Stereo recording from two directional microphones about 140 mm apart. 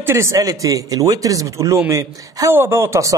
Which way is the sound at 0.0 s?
20° right (ahead or behind).